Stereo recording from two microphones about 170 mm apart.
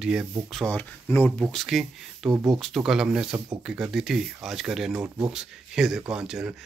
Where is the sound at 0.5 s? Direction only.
10° left (ahead or behind).